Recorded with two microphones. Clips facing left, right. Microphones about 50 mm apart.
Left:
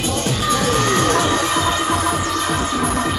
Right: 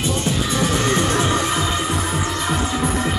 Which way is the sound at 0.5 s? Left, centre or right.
Left.